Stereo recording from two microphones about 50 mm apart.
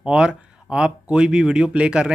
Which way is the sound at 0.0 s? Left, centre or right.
Centre.